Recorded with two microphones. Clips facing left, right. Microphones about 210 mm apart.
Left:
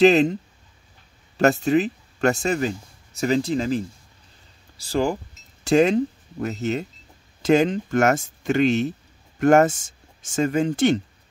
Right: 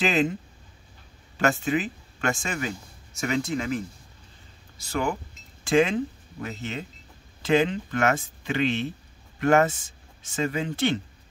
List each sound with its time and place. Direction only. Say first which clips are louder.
0.0 s speech: left 9 dB; 40° left (ahead or behind)
1.4 s speech: left 6 dB; 40° left (ahead or behind)